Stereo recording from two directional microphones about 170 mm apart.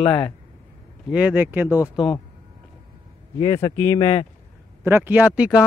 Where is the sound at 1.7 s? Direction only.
20° left (ahead or behind).